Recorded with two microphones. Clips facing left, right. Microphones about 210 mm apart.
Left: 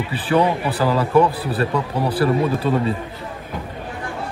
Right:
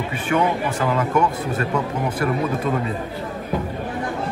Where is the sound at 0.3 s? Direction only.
35° left (ahead or behind).